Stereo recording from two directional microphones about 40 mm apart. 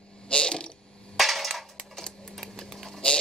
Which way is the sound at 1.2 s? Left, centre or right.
Centre.